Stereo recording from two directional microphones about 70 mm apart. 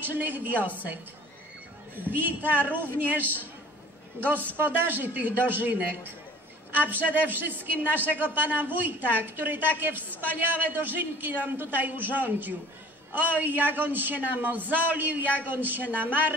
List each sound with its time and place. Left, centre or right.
0.0 s a man's voice: right
2.0 s a man's voice: right